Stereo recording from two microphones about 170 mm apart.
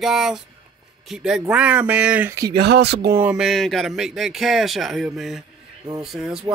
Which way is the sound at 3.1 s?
10° right (ahead or behind).